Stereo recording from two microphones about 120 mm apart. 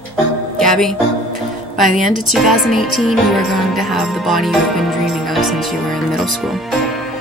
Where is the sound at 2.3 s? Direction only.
Centre (ahead or behind).